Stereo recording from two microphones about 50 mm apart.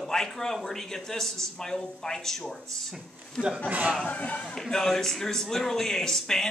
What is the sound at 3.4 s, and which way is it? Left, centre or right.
Speech, left.